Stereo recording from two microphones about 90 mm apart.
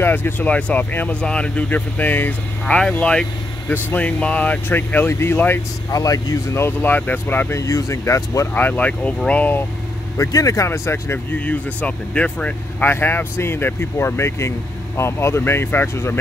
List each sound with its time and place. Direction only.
0.0 s speech: 25° left (ahead or behind)
5.9 s speech: 40° left (ahead or behind)
6.5 s speech: 25° left (ahead or behind)
7.6 s speech: 35° left (ahead or behind)
8.6 s speech: 15° left (ahead or behind)
10.1 s speech: 40° left (ahead or behind)
11.3 s speech: 15° left (ahead or behind)